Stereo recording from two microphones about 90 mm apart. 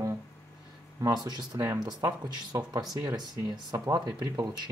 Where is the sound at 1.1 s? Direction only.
50° right (ahead or behind).